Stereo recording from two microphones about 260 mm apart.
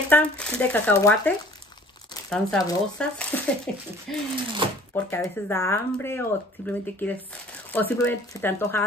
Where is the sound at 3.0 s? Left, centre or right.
Centre.